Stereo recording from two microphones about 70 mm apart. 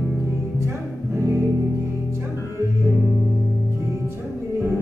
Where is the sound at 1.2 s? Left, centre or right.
Right.